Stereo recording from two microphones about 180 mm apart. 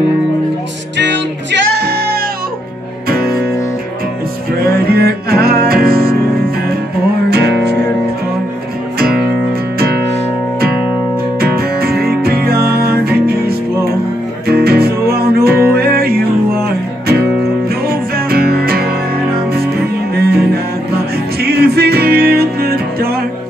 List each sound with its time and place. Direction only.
0.9 s music: 75° right (ahead or behind); by 2.2 s 60° right (ahead or behind)
4.6 s music: 60° right (ahead or behind)
7.2 s music: 65° right (ahead or behind)
11.3 s music: 60° right (ahead or behind)
17.8 s music: 55° right (ahead or behind)